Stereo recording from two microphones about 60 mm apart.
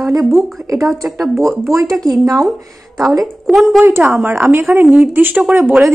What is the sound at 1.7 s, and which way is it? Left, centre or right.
Speech, right.